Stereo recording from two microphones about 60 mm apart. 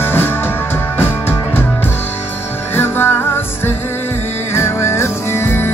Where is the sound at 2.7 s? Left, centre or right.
Left.